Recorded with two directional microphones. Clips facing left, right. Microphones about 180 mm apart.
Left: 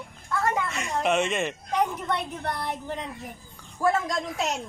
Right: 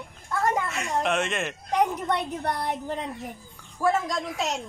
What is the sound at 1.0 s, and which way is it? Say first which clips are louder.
Speech: left 6 dB; centre (ahead or behind).